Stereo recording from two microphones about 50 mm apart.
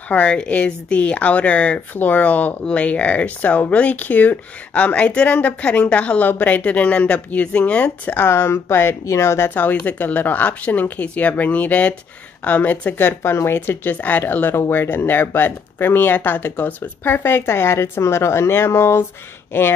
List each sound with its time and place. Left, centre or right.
0.1 s speech: left
6.2 s speech: left
8.2 s speech: left
9.0 s speech: left
9.5 s speech: left
12.9 s speech: left
19.5 s speech: left